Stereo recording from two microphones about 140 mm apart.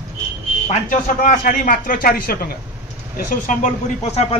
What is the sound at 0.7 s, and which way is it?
Speech, 65° left (ahead or behind).